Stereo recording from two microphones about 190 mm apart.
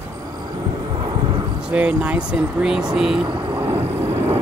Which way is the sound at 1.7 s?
5° right (ahead or behind).